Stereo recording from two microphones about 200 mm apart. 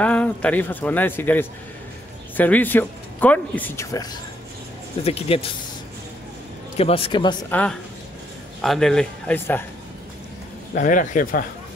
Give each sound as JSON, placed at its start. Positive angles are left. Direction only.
{"t": 0.0, "sound": "speech", "side_deg": 5}
{"t": 5.0, "sound": "a man's voice", "side_deg": 30}
{"t": 6.8, "sound": "a man's voice", "side_deg": 30}
{"t": 8.5, "sound": "a man's voice", "side_deg": 5}
{"t": 10.7, "sound": "speech", "side_deg": 40}